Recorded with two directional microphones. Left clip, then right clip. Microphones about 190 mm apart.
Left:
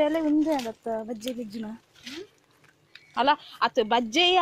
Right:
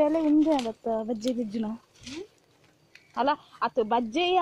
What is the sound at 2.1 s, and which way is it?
Patter, 50° right (ahead or behind).